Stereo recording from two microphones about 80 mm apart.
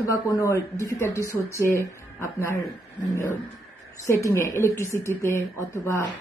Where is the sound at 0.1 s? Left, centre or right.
Left.